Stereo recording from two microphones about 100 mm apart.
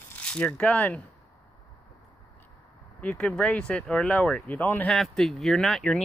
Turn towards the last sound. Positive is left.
turn(degrees=5)  # may be behind; listen again after turning